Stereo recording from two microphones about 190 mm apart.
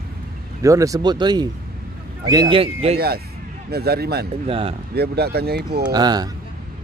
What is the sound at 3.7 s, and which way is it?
Speech, 55° right (ahead or behind).